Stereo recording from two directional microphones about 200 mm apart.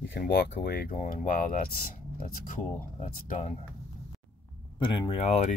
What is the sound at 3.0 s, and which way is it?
Speech, 40° left (ahead or behind).